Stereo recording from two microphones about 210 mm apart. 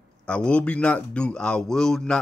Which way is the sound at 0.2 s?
5° left (ahead or behind).